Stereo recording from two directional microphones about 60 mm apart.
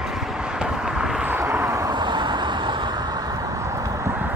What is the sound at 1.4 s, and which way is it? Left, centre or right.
Vehicle, right.